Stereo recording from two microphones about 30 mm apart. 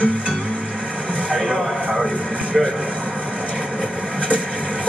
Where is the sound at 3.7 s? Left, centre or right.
Right.